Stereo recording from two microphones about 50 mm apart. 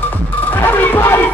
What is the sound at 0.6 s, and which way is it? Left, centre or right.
Music, left.